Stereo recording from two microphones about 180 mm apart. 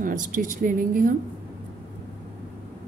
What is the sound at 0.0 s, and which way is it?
A woman's voice, 50° right (ahead or behind).